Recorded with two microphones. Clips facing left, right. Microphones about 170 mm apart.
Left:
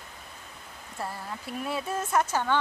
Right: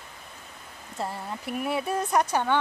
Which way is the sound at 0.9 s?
15° right (ahead or behind).